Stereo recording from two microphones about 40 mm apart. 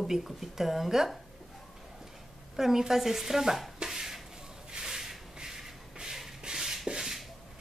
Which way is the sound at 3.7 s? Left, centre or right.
Centre.